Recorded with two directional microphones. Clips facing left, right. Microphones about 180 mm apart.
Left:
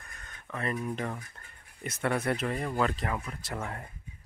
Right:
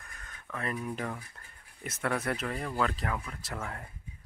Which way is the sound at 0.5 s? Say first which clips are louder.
Left 2 dB; centre (ahead or behind).